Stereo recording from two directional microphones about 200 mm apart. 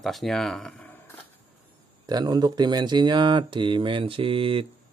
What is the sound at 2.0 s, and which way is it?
Speech, 20° right (ahead or behind).